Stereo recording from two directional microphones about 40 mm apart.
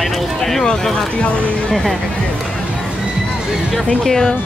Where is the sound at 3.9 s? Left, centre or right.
Centre.